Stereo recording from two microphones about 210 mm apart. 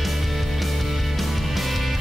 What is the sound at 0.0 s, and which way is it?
Music, centre (ahead or behind).